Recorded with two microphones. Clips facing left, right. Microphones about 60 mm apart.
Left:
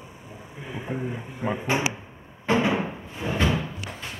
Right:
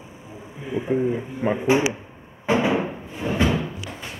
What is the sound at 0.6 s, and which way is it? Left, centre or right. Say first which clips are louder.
Speech: right 9 dB; centre.